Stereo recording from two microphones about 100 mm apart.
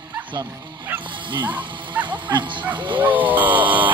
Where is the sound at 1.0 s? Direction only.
55° right (ahead or behind).